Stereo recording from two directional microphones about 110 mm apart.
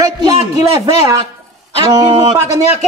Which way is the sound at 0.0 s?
30° right (ahead or behind).